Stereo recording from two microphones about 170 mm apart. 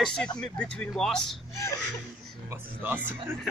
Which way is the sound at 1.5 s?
20° left (ahead or behind).